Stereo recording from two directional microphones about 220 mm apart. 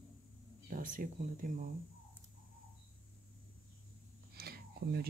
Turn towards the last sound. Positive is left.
turn(degrees=-45)  # may be behind; listen again after turning